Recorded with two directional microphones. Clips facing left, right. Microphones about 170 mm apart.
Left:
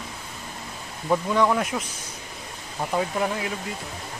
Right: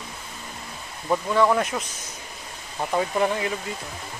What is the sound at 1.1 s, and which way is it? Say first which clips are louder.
Speech: right 1 dB; centre (ahead or behind).